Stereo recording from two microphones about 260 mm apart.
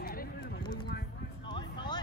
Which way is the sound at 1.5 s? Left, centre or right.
Centre.